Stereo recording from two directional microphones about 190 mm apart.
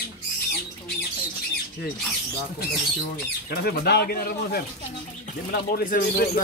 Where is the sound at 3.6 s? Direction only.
55° left (ahead or behind).